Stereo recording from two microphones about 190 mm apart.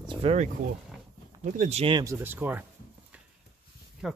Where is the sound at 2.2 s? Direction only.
10° right (ahead or behind).